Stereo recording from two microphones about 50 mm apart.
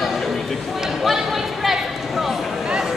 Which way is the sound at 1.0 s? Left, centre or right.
Centre.